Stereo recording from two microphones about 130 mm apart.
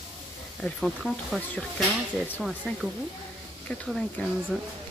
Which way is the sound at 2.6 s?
10° left (ahead or behind).